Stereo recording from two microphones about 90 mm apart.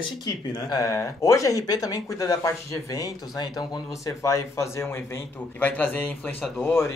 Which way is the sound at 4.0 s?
35° left (ahead or behind).